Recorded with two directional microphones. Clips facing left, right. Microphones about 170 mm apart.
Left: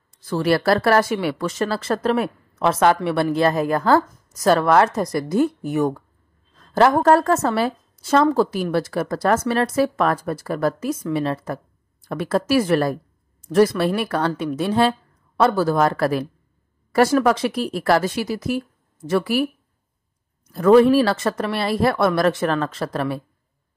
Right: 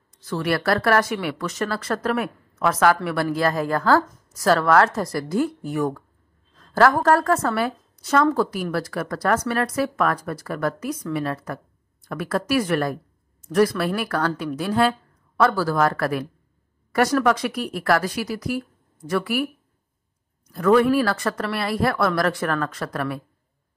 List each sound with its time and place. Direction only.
0.3 s speech: 30° left (ahead or behind)
20.5 s speech: 30° left (ahead or behind)